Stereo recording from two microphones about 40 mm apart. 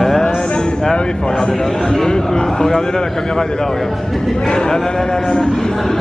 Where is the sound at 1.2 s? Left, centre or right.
Centre.